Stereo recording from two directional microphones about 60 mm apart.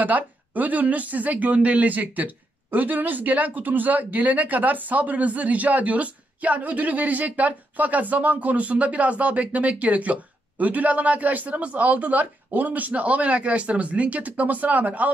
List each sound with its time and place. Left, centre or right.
0.0 s speech: right